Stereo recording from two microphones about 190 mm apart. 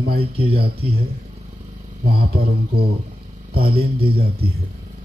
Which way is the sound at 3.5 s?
55° right (ahead or behind).